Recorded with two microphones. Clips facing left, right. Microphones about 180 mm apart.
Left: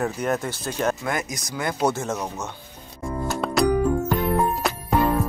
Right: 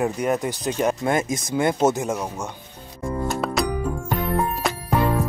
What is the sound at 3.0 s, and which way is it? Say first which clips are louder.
Music: right 2 dB; centre (ahead or behind).